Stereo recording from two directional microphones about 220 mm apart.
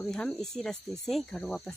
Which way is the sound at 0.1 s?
Centre (ahead or behind).